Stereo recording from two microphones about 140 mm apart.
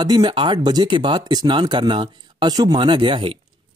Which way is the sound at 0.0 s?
30° right (ahead or behind).